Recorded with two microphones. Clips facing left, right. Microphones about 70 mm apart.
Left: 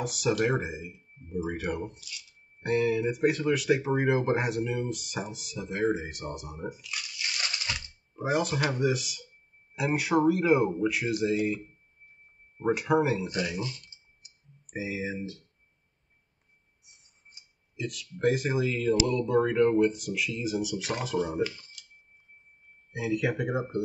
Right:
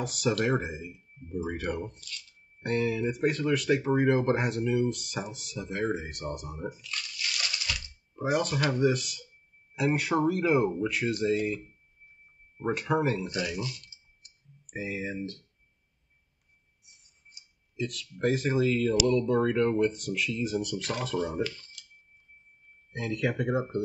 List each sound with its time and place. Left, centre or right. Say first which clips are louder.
0.0 s speech: left 1 dB; centre
6.9 s bathtub: even; centre
7.2 s a sound: even; left
8.2 s speech: even; centre
13.4 s speech: left 1 dB; left
14.8 s speech: left 1 dB; centre
17.7 s speech: right 1 dB; centre
22.9 s speech: left 1 dB; centre